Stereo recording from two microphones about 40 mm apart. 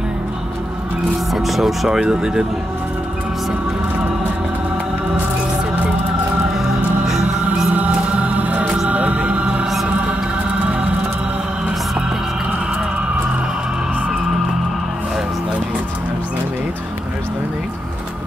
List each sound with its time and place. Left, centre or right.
1.3 s speech: centre
1.9 s speech: right
7.1 s music: centre
7.7 s music: right
8.6 s music: right